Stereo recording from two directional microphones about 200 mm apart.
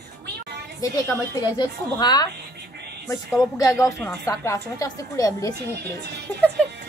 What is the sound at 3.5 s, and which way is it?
A woman's voice, 15° left (ahead or behind).